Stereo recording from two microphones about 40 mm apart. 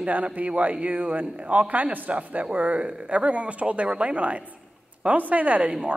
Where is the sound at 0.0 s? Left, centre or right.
Right.